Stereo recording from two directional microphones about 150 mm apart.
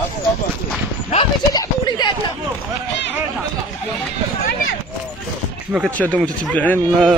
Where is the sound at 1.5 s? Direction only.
30° left (ahead or behind).